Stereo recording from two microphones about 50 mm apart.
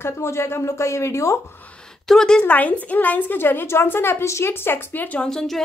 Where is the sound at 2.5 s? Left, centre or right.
Left.